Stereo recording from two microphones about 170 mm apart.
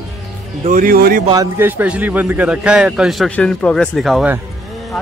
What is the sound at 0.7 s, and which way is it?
Speech, 55° right (ahead or behind).